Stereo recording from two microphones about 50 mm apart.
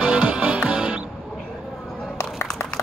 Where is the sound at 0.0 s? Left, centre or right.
Right.